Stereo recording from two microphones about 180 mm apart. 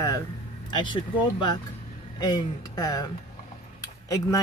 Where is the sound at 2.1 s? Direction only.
20° left (ahead or behind).